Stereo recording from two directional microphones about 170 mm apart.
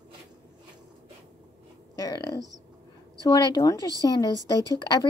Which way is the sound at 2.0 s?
25° left (ahead or behind).